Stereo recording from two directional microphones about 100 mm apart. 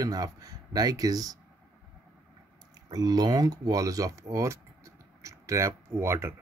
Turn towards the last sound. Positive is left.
turn(degrees=-25)  # may be behind; listen again after turning